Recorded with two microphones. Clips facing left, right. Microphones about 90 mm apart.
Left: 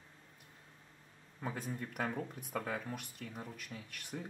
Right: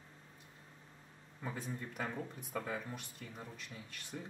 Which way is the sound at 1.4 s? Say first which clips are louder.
Left 2 dB; 5° left (ahead or behind).